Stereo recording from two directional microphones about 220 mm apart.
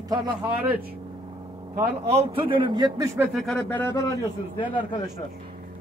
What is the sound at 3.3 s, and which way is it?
Speech, 5° left (ahead or behind).